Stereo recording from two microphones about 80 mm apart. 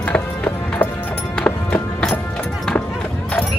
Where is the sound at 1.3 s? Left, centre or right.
Centre.